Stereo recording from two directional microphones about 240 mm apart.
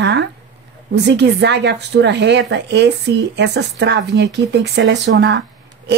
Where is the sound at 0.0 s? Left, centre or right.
Right.